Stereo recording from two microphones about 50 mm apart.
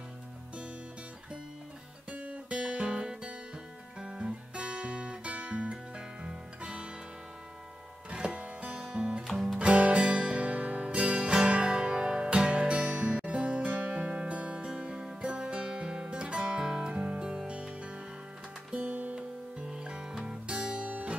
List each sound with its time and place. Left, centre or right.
2.0 s guitar: right
8.1 s music: right
8.7 s music: centre
9.3 s music: centre
9.6 s music: right
19.6 s music: centre